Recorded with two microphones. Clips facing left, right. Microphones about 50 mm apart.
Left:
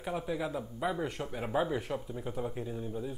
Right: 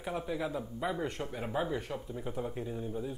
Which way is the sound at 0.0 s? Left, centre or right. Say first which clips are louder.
Left 1 dB; centre.